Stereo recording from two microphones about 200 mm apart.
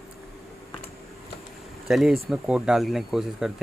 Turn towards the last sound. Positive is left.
turn(degrees=0)  # may be behind; listen again after turning